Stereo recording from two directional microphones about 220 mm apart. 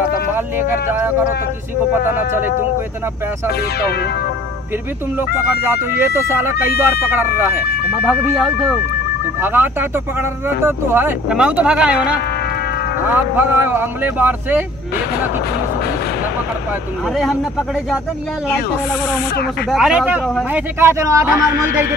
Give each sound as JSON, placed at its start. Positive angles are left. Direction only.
{"t": 0.8, "sound": "speech", "side_deg": -10}
{"t": 5.9, "sound": "speech", "side_deg": -10}
{"t": 17.1, "sound": "speech", "side_deg": 0}
{"t": 19.7, "sound": "speech", "side_deg": 0}
{"t": 21.4, "sound": "speech", "side_deg": 45}